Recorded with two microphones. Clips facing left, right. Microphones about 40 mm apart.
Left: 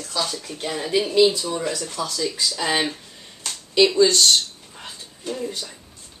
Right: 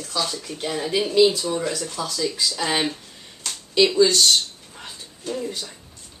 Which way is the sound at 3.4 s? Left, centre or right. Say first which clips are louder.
Left 1 dB; centre.